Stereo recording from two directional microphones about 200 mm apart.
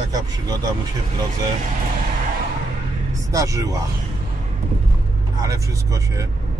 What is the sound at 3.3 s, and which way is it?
Speech, 15° right (ahead or behind).